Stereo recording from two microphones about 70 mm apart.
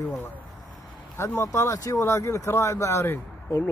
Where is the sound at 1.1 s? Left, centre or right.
Left.